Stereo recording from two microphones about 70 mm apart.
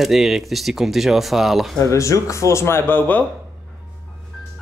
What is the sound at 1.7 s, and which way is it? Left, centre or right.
Speech, left.